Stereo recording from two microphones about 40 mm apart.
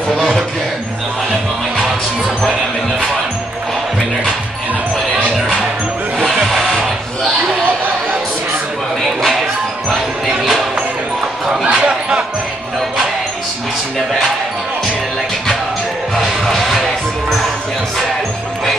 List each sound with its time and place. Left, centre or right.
6.3 s music: centre
6.6 s music: centre
9.0 s a sound: centre
9.8 s basketball bounce: centre
11.6 s a sound: right
16.2 s music: centre